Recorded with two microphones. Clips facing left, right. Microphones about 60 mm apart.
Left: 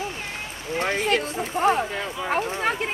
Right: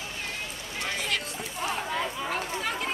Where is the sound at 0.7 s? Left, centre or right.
Left.